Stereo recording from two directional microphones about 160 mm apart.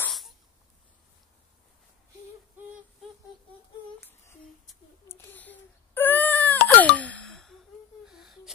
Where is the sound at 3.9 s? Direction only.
15° left (ahead or behind).